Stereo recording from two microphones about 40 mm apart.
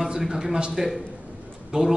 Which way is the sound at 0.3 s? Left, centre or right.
Centre.